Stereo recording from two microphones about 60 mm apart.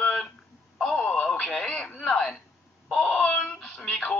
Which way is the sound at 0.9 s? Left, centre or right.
Centre.